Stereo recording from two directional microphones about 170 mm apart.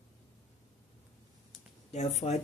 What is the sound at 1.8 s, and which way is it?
Speech, 40° left (ahead or behind).